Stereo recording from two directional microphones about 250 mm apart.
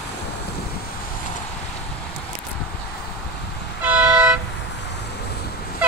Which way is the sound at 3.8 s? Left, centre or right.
Centre.